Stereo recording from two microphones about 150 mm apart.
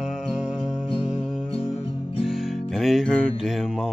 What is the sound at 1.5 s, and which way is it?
Music, 35° left (ahead or behind).